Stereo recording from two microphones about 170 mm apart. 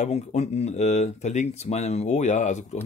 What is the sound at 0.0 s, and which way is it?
Speech, 40° left (ahead or behind).